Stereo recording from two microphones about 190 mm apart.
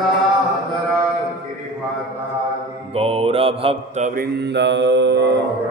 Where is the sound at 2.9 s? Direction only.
30° right (ahead or behind); by 5.4 s 70° right (ahead or behind).